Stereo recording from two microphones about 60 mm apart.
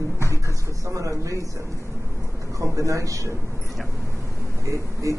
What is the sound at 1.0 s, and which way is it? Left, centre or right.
Speech, right.